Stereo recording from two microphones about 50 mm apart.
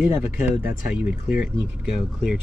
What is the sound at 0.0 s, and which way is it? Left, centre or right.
Speech, right.